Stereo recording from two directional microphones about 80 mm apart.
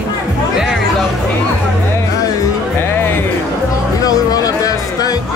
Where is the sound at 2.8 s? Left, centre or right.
Left.